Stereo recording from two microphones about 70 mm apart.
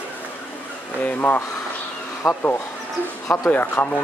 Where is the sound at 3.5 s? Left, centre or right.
Left.